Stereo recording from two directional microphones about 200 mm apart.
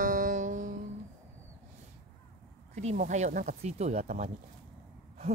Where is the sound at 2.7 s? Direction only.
35° right (ahead or behind).